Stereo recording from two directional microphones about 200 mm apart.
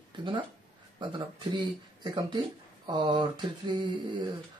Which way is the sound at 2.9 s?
25° right (ahead or behind).